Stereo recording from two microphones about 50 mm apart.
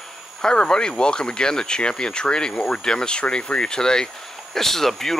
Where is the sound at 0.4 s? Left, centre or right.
Centre.